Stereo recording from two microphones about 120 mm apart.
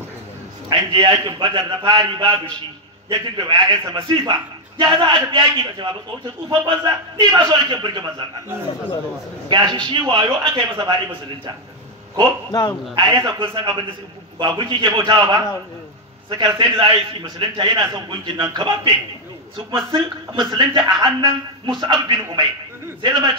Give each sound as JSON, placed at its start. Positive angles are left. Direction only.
{"t": 0.7, "sound": "speech", "side_deg": -40}
{"t": 9.5, "sound": "speech", "side_deg": -40}
{"t": 12.4, "sound": "a man's voice", "side_deg": 30}
{"t": 12.9, "sound": "speech", "side_deg": -35}